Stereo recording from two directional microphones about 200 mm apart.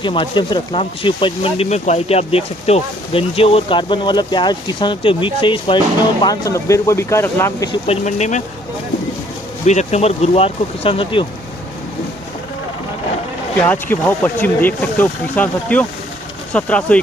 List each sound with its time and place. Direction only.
0.0 s speech: 25° left (ahead or behind)
7.8 s speech: 35° left (ahead or behind)
9.7 s speech: 35° left (ahead or behind)
13.6 s speech: 10° left (ahead or behind)